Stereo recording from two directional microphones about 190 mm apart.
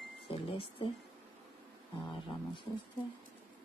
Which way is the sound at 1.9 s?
25° left (ahead or behind).